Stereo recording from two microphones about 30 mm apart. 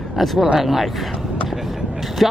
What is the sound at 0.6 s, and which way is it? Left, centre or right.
Speech, centre.